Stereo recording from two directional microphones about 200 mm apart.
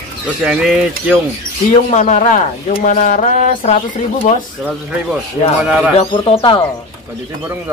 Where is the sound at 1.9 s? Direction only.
35° left (ahead or behind).